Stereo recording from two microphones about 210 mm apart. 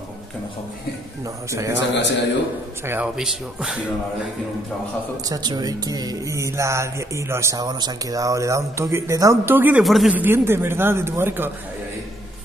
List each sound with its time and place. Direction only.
1.7 s a man's voice: 55° left (ahead or behind)
2.9 s speech: 5° right (ahead or behind)
5.3 s speech: 20° right (ahead or behind)